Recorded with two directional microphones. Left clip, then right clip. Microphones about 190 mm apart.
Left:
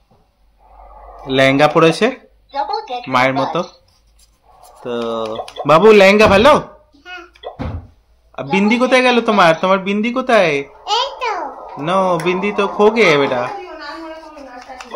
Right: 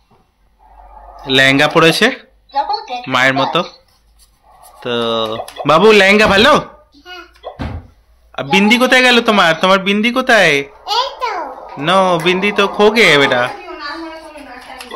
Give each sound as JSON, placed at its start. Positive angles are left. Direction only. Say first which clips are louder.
{"t": 1.2, "sound": "speech", "louder": "right 1 dB", "side_deg": 5}
{"t": 4.7, "sound": "a man's voice", "louder": "right 4 dB", "side_deg": 0}
{"t": 8.3, "sound": "a man's voice", "louder": "right 5 dB", "side_deg": 5}
{"t": 10.9, "sound": "a sound", "louder": "even", "side_deg": 25}
{"t": 11.6, "sound": "a man's voice", "louder": "right 4 dB", "side_deg": 0}